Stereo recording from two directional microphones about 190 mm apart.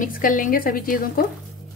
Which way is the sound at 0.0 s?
45° left (ahead or behind).